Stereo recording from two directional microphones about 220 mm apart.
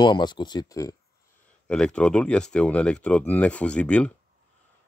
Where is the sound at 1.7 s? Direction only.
5° left (ahead or behind).